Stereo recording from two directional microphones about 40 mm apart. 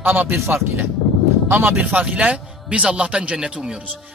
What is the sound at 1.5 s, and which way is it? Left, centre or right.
A man's voice, right.